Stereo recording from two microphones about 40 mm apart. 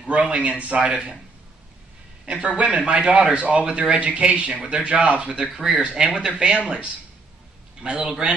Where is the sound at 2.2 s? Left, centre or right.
Right.